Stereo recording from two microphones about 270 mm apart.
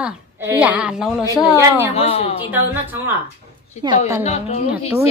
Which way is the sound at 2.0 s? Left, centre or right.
Left.